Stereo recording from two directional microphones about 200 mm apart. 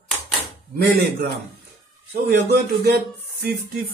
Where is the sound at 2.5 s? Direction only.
50° right (ahead or behind).